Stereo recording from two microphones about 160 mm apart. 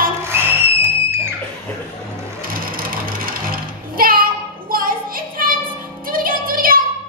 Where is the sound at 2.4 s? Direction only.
65° right (ahead or behind).